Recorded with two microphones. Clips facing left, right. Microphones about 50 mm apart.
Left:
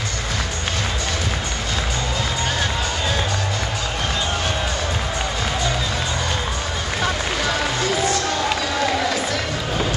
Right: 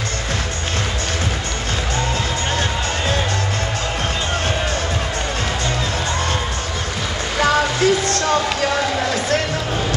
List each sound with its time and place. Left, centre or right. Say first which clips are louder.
7.3 s music: right 5 dB; right